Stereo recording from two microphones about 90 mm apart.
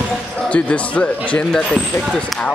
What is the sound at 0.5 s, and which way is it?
Speech, 15° left (ahead or behind).